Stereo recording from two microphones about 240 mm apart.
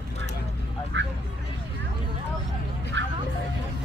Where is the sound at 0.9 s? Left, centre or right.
Right.